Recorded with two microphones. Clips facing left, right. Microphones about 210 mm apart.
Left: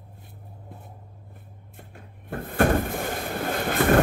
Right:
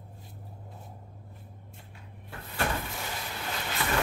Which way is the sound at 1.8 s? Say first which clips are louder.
Left 4 dB; 50° left (ahead or behind).